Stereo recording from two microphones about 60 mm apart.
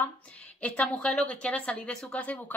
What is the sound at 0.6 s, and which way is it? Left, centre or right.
A woman's voice, left.